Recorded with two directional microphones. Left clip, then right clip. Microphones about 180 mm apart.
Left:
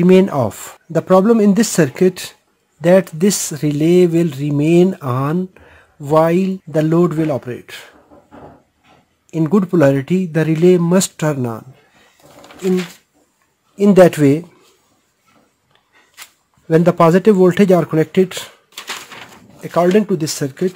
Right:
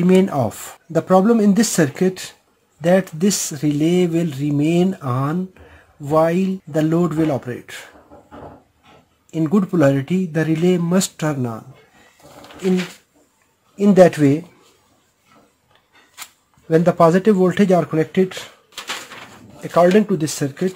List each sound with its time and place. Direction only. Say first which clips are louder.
0.0 s speech: left 4 dB; 30° left (ahead or behind)
9.3 s speech: left 4 dB; 30° left (ahead or behind)
12.4 s a sound: left 2 dB; 25° left (ahead or behind)
13.7 s speech: left 2 dB; 30° left (ahead or behind)
16.6 s speech: left 2 dB; 30° left (ahead or behind)
19.6 s speech: even; 20° left (ahead or behind)